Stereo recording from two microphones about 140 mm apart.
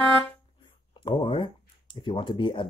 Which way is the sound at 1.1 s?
35° left (ahead or behind).